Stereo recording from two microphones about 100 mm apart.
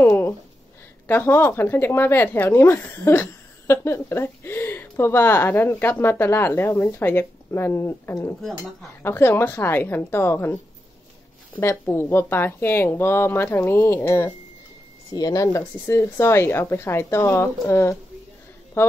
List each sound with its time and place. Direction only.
0.0 s a sound: 20° left (ahead or behind)
1.0 s speech: 20° left (ahead or behind)
8.4 s speech: centre (ahead or behind)
9.0 s speech: 20° left (ahead or behind)
15.0 s speech: 40° left (ahead or behind); by 18.9 s 25° left (ahead or behind)